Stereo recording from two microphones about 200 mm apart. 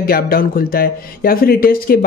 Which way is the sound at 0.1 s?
50° left (ahead or behind).